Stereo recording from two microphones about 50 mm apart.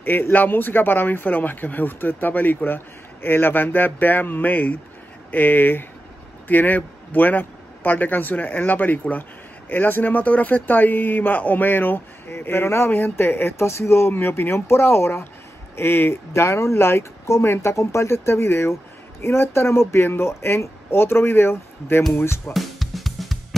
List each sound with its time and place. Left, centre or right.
0.0 s speech: left
16.3 s speech: left
17.6 s speech: left
22.5 s drum kit: centre